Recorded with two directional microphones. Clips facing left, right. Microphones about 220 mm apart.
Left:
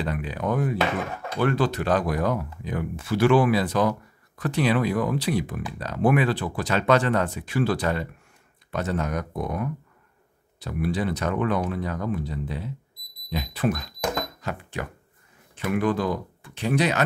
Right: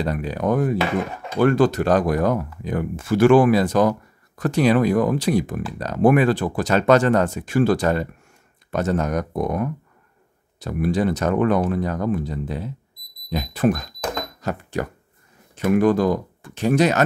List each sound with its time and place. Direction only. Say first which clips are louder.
0.0 s speech: right 5 dB; 40° right (ahead or behind)